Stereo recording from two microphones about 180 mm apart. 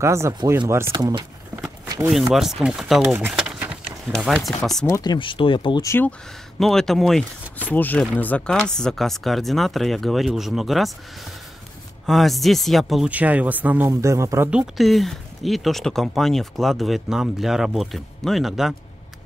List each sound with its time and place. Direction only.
0.0 s speech: 15° right (ahead or behind)
2.0 s speech: centre (ahead or behind)
4.8 s speech: 20° left (ahead or behind)
5.9 s speech: 10° left (ahead or behind)
12.1 s speech: centre (ahead or behind); by 14.5 s 15° right (ahead or behind)
14.5 s speech: 5° right (ahead or behind)